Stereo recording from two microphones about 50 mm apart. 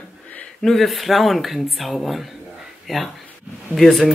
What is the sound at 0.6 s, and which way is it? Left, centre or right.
A man's voice, centre.